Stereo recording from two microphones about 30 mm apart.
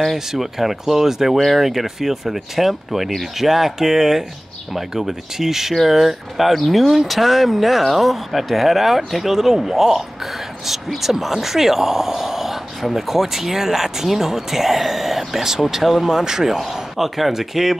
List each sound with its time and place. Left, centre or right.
0.1 s speech: centre
15.8 s a man's voice: centre